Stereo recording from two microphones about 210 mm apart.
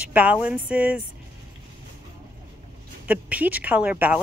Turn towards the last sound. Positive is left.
turn(degrees=-5)  # may be behind; listen again after turning